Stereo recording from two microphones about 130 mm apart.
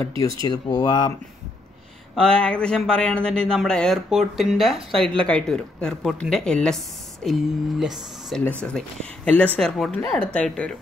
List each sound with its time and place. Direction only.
0.2 s speech: 30° left (ahead or behind)
2.1 s speech: 5° left (ahead or behind)